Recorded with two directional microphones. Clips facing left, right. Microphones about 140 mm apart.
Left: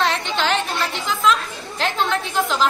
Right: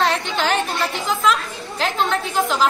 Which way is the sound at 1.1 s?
Centre (ahead or behind).